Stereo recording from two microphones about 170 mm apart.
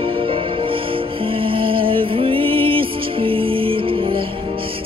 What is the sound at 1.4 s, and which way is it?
Music, 30° right (ahead or behind).